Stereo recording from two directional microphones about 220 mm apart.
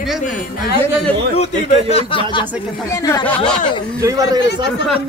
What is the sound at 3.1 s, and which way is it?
Speech, 10° left (ahead or behind).